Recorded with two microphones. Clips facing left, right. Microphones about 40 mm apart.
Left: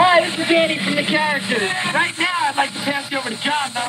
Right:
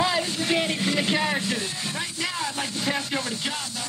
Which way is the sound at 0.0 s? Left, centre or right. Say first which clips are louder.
Left 10 dB; left.